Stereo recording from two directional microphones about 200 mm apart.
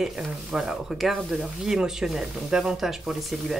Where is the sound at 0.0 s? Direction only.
5° right (ahead or behind).